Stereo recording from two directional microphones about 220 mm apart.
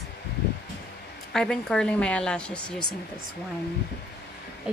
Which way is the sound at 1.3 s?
5° left (ahead or behind).